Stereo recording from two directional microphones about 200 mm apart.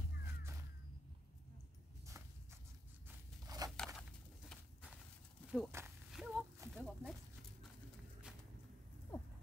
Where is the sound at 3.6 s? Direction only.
20° right (ahead or behind).